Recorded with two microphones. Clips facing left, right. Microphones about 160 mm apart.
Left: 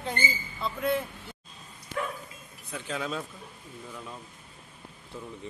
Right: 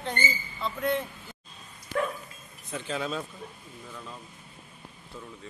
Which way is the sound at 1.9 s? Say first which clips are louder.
Right 4 dB; 50° right (ahead or behind).